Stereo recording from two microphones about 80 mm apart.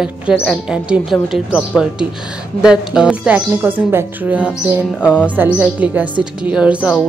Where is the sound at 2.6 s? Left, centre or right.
Centre.